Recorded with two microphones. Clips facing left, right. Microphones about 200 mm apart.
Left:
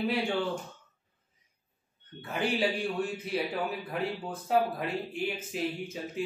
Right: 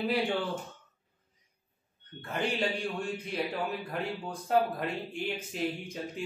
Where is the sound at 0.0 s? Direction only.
Centre (ahead or behind).